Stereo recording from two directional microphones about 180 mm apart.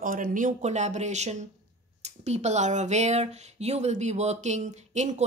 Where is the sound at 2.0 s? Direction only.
40° right (ahead or behind).